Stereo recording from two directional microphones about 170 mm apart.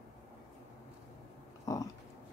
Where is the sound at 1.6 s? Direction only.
20° left (ahead or behind).